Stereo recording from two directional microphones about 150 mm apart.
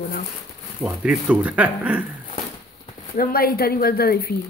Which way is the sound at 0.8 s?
5° right (ahead or behind).